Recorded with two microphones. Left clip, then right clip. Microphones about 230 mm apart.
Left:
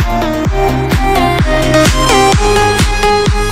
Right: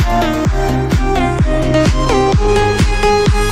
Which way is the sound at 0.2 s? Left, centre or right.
Centre.